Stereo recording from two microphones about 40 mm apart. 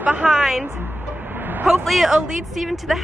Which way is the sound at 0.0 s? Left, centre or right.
Right.